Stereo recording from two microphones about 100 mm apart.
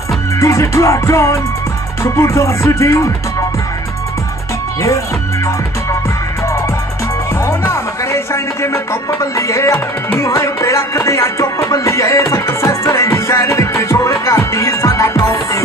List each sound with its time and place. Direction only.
0.4 s music: 30° left (ahead or behind)
7.4 s music: 30° left (ahead or behind)